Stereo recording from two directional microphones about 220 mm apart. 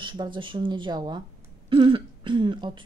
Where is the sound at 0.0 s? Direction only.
20° right (ahead or behind).